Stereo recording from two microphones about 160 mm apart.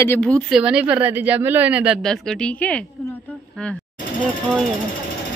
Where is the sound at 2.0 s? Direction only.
5° left (ahead or behind).